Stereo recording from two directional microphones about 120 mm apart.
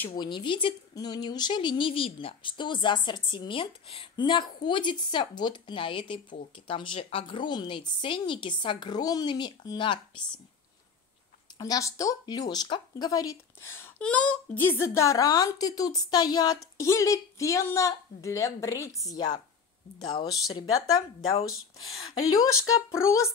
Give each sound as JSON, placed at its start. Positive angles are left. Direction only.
{"t": 0.2, "sound": "speech", "side_deg": 40}
{"t": 4.2, "sound": "a woman's voice", "side_deg": 40}
{"t": 11.5, "sound": "speech", "side_deg": 30}
{"t": 13.1, "sound": "speech", "side_deg": 30}
{"t": 22.4, "sound": "speech", "side_deg": 25}